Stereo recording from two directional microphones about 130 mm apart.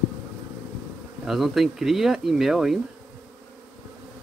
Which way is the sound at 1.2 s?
Centre (ahead or behind).